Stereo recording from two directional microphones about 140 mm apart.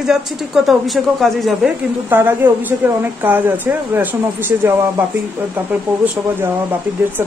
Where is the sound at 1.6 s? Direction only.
15° right (ahead or behind).